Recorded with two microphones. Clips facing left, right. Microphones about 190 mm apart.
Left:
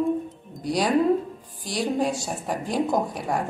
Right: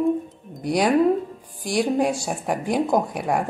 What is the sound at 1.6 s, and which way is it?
A woman's voice, 10° right (ahead or behind).